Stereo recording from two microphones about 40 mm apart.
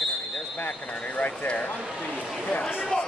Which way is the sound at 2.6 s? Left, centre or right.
Centre.